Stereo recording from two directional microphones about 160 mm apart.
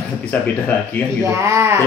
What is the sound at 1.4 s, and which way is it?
Speech, 15° right (ahead or behind).